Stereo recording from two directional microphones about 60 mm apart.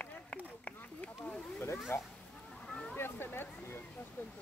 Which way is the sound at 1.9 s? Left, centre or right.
Left.